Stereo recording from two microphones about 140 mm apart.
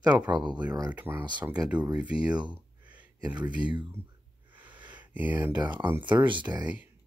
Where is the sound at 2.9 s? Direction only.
10° right (ahead or behind).